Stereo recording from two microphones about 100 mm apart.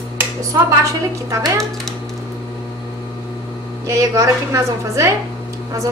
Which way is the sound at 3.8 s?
30° right (ahead or behind).